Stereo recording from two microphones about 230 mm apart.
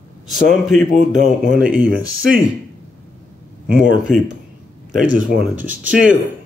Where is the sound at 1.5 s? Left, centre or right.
Right.